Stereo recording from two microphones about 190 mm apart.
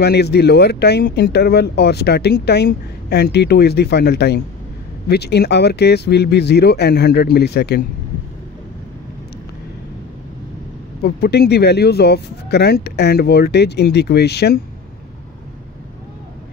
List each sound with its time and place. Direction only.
0.0 s speech: 60° left (ahead or behind)
11.0 s speech: 55° left (ahead or behind)